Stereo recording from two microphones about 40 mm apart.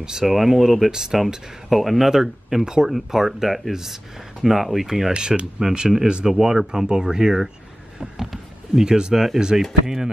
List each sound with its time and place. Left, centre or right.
0.0 s speech: centre
0.9 s speech: centre
2.9 s speech: centre
5.1 s speech: right
5.6 s speech: centre
6.0 s speech: right
6.3 s speech: centre